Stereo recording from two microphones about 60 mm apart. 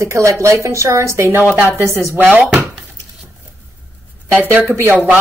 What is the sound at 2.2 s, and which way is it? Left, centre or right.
Speech, right.